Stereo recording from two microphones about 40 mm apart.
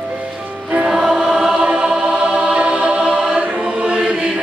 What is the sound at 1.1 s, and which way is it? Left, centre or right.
Choir, centre.